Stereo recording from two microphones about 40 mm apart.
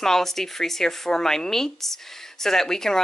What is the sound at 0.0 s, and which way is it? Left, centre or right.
Speech, centre.